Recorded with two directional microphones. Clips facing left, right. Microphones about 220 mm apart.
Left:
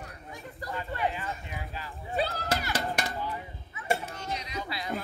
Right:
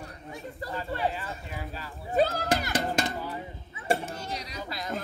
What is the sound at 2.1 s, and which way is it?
Children playing, 45° right (ahead or behind).